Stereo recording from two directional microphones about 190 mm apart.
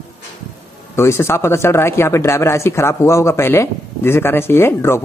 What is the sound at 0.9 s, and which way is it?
Speech, 15° left (ahead or behind).